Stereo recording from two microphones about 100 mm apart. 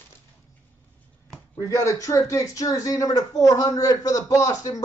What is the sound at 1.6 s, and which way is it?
Speech, 30° left (ahead or behind).